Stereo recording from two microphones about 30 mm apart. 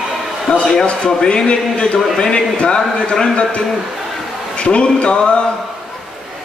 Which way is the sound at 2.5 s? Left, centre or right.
Left.